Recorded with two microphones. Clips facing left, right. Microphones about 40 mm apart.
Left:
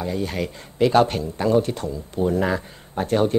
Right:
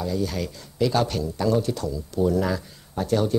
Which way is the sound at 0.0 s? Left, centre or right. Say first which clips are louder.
Left 1 dB; left.